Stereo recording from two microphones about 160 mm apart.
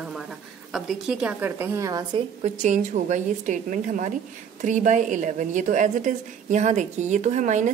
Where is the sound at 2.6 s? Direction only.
50° right (ahead or behind).